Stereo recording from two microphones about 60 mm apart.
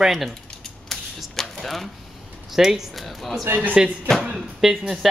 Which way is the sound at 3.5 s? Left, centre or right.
Right.